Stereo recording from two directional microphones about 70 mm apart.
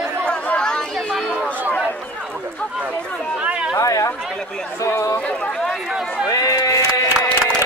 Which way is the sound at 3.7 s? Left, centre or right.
Left.